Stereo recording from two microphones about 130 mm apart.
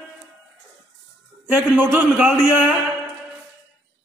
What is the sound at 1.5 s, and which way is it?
Speech, 15° right (ahead or behind).